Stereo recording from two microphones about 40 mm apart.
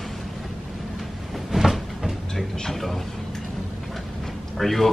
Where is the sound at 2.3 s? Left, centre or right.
Centre.